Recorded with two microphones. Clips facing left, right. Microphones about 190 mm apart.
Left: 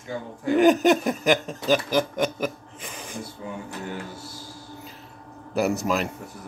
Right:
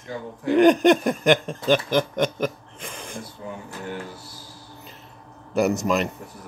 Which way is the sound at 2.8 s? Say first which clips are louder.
Right 1 dB; 50° right (ahead or behind).